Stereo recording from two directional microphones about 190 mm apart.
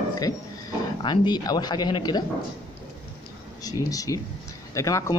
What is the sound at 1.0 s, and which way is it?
Speech, 25° left (ahead or behind).